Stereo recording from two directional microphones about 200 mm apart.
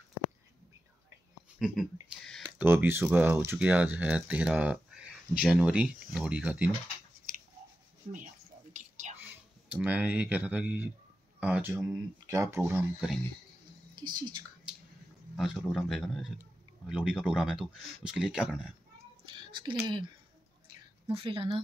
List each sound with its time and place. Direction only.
1.6 s a man's voice: centre (ahead or behind)
2.6 s a man's voice: 10° right (ahead or behind)
8.0 s speech: 35° right (ahead or behind)
9.2 s speech: 5° right (ahead or behind); by 14.4 s 20° right (ahead or behind)
15.3 s a man's voice: centre (ahead or behind)
19.2 s cat: 25° right (ahead or behind)
21.1 s speech: 25° right (ahead or behind)